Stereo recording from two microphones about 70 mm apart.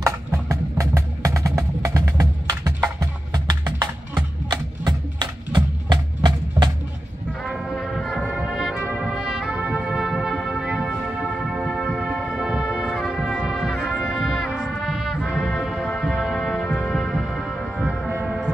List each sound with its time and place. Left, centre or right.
0.0 s music: right
7.7 s music: centre
8.3 s brass instrument: centre
10.9 s music: centre
12.9 s brass instrument: centre
14.1 s music: centre
15.2 s brass instrument: centre
16.1 s music: centre
18.2 s foghorn: centre